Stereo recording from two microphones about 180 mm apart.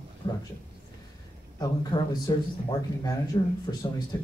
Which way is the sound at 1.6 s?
25° left (ahead or behind).